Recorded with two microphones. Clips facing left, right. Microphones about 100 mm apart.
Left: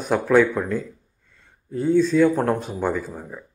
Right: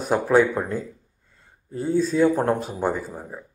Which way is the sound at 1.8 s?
40° right (ahead or behind).